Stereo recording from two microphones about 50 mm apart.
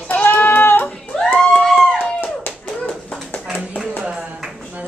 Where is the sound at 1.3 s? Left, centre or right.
Centre.